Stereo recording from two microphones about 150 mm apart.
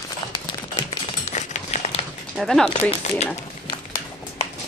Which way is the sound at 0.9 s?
50° left (ahead or behind).